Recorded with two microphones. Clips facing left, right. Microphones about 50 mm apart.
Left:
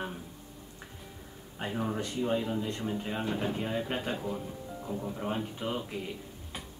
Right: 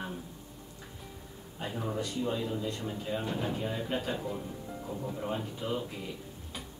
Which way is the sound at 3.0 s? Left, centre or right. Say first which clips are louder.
Even; left.